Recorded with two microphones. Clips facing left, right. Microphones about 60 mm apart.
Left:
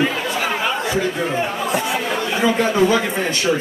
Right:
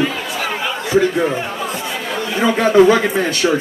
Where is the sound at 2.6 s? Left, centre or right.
Right.